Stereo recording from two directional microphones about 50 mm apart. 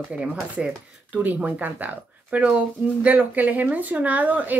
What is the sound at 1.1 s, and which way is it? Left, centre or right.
Speech, right.